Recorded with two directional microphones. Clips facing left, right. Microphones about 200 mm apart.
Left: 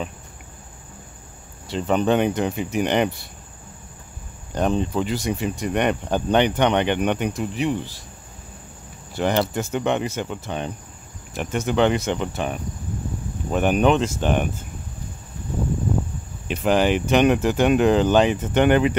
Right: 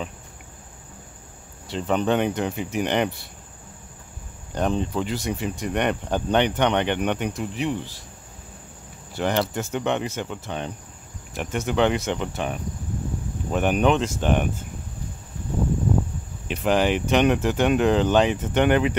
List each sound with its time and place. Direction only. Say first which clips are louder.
1.7 s speech: left 2 dB; 15° left (ahead or behind)
4.6 s speech: left 2 dB; 15° left (ahead or behind)
9.1 s speech: left 2 dB; 15° left (ahead or behind)
11.3 s speech: left 2 dB; centre (ahead or behind)
16.4 s speech: left 2 dB; centre (ahead or behind)